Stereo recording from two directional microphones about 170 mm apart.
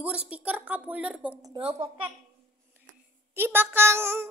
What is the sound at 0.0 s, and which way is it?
A woman's voice, 5° right (ahead or behind).